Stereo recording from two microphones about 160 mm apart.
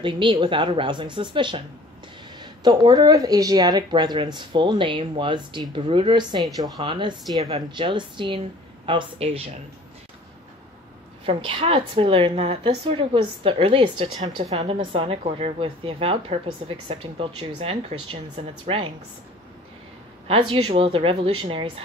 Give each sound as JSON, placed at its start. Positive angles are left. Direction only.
{"t": 0.0, "sound": "speech", "side_deg": -30}
{"t": 11.2, "sound": "speech", "side_deg": -35}
{"t": 14.4, "sound": "a woman's voice", "side_deg": -45}
{"t": 20.2, "sound": "speech", "side_deg": -35}